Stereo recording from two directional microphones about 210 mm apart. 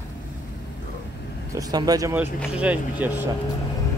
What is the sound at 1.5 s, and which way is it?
Speech, 15° right (ahead or behind).